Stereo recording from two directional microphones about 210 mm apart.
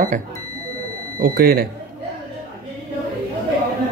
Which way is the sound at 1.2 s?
45° right (ahead or behind).